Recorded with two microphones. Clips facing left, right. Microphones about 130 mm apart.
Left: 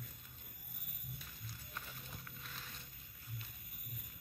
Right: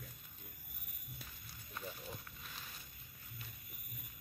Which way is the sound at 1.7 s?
5° right (ahead or behind).